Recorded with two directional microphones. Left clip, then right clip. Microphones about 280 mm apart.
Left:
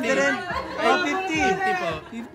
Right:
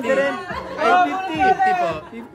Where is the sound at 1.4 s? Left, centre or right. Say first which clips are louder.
Right 9 dB; centre.